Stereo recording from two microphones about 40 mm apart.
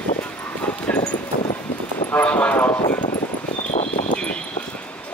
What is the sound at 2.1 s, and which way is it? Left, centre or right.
Vehicle, left.